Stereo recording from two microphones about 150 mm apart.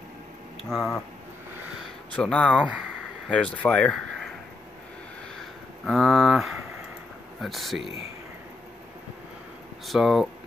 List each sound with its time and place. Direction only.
0.7 s speech: centre (ahead or behind)
2.1 s speech: 5° left (ahead or behind)
2.6 s speech: 10° right (ahead or behind)
3.3 s speech: 10° left (ahead or behind)
5.9 s speech: centre (ahead or behind)
9.8 s speech: centre (ahead or behind)